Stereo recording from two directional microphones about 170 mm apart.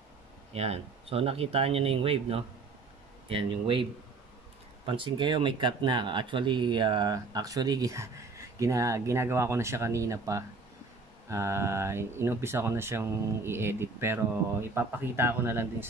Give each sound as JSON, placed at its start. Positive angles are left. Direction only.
{"t": 0.5, "sound": "speech", "side_deg": -40}
{"t": 4.8, "sound": "speech", "side_deg": -30}